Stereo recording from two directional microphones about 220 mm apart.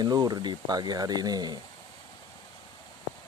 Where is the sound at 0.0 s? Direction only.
20° right (ahead or behind).